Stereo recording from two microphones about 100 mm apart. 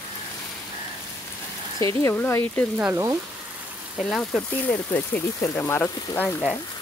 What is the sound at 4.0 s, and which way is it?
Speech, 5° left (ahead or behind).